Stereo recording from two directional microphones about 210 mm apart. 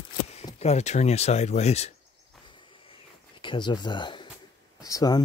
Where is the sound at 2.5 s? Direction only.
25° left (ahead or behind).